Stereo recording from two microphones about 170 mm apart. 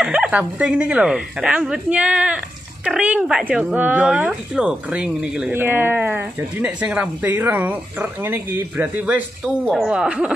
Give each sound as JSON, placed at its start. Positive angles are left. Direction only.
{"t": 0.0, "sound": "speech", "side_deg": -5}